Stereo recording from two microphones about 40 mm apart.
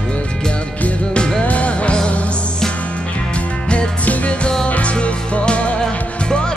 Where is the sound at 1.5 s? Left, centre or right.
Left.